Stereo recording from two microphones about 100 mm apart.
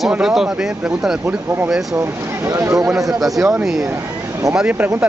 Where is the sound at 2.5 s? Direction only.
30° right (ahead or behind).